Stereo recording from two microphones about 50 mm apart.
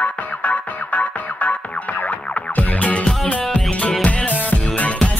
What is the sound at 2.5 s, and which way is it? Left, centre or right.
Music, left.